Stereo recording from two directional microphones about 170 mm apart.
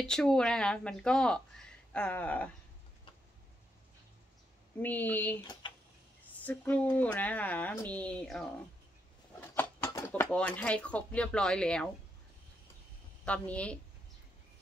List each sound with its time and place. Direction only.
0.0 s speech: 5° left (ahead or behind)
4.7 s speech: 10° left (ahead or behind)
5.6 s tick-tock: 30° left (ahead or behind)
6.4 s speech: 10° left (ahead or behind)
9.6 s speech: 15° left (ahead or behind)
13.2 s speech: 10° left (ahead or behind)